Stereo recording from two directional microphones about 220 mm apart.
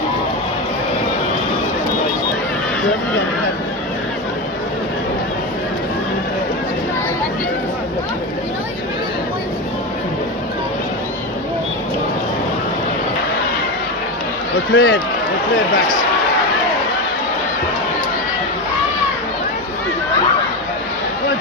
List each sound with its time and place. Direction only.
14.7 s speech: 60° left (ahead or behind)